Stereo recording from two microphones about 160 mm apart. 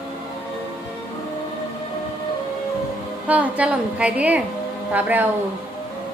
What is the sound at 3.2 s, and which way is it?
A woman's voice, 10° right (ahead or behind).